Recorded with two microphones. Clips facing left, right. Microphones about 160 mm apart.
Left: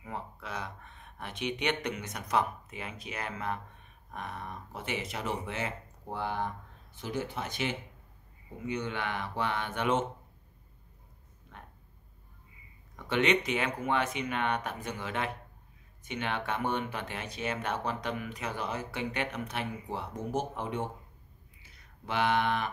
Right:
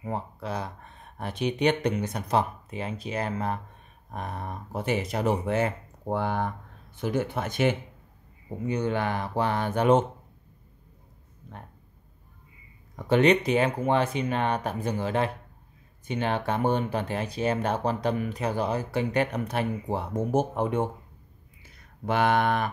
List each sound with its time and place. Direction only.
0.0 s speech: 35° right (ahead or behind); by 7.7 s 50° right (ahead or behind)
8.5 s speech: 40° right (ahead or behind)
12.9 s speech: 40° right (ahead or behind)
22.0 s speech: 50° right (ahead or behind)